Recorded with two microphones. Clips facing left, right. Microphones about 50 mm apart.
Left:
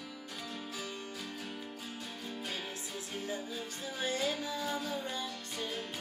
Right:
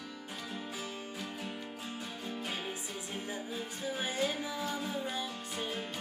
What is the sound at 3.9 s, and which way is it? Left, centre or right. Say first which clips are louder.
Music: even; centre.